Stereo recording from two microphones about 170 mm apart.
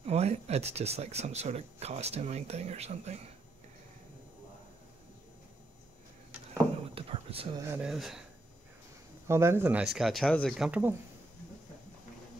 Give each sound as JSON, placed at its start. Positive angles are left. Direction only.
{"t": 0.0, "sound": "speech", "side_deg": -40}
{"t": 7.0, "sound": "a sound", "side_deg": -35}
{"t": 7.5, "sound": "speech", "side_deg": -15}
{"t": 7.8, "sound": "speech", "side_deg": 0}
{"t": 9.3, "sound": "speech", "side_deg": -15}
{"t": 9.9, "sound": "speech", "side_deg": 0}